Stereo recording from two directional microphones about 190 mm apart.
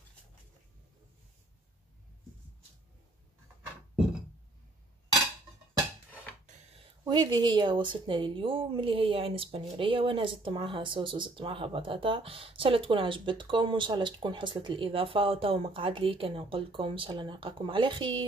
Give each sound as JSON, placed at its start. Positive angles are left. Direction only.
{"t": 6.8, "sound": "speech", "side_deg": -25}